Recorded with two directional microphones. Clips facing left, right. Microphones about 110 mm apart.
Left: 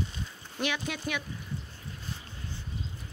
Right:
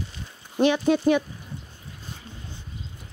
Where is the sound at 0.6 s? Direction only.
30° right (ahead or behind).